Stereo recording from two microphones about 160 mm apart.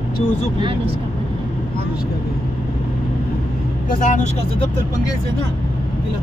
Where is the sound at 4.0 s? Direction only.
50° left (ahead or behind).